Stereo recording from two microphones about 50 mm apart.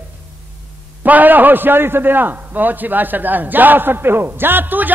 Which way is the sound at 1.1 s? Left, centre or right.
Right.